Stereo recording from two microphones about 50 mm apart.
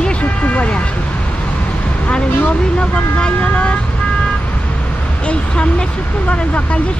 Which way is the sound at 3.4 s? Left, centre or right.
Left.